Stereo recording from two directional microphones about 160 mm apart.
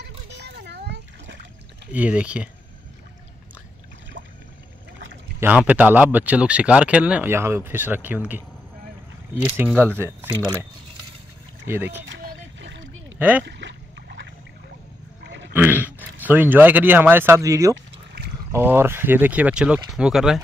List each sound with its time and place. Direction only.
0.3 s children playing: 90° right
1.9 s speech: 10° right (ahead or behind)
5.4 s speech: 10° right (ahead or behind)
9.3 s speech: 15° right (ahead or behind)
12.2 s a sound: 90° right
13.5 s boat: 90° right
15.2 s a sound: 90° right
15.5 s speech: 10° right (ahead or behind)